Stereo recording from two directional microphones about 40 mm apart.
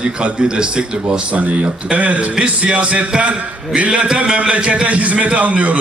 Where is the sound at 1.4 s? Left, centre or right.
Right.